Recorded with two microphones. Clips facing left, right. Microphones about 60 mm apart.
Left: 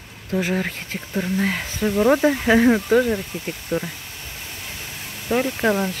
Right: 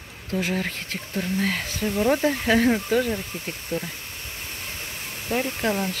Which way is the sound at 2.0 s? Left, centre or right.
Left.